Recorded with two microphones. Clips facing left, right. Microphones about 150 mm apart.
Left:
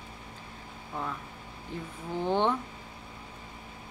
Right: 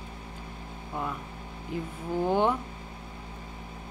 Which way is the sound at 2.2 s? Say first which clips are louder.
Right 2 dB; 10° right (ahead or behind).